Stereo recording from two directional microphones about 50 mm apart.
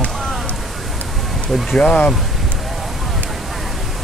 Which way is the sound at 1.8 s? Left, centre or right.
Left.